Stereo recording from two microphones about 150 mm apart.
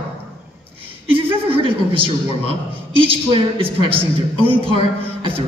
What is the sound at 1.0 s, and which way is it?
A man's voice, 35° right (ahead or behind).